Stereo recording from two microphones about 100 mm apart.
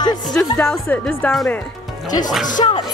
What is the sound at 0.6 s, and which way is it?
Speech, 15° left (ahead or behind).